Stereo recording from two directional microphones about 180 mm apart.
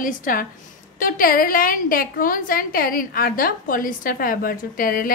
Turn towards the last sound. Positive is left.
turn(degrees=50)  # may be behind; listen again after turning